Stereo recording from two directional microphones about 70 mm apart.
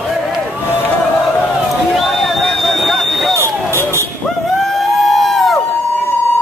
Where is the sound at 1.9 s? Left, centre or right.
Centre.